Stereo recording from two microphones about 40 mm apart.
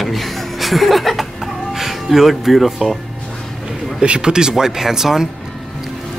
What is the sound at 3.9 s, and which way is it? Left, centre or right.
Speech, right.